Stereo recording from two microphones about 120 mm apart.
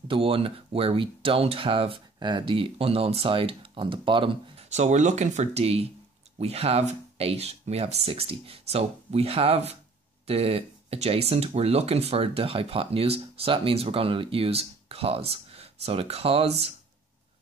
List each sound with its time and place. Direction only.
0.1 s speech: 50° right (ahead or behind)
4.6 s speech: 70° right (ahead or behind)